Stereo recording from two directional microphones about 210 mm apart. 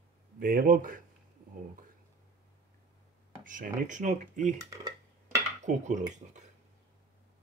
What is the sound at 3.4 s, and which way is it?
Speech, 40° right (ahead or behind).